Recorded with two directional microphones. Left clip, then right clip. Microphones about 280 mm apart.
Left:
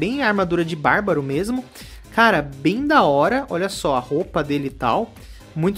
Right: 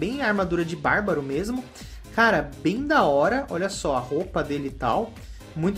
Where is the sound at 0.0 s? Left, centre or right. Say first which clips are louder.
Left 5 dB; left.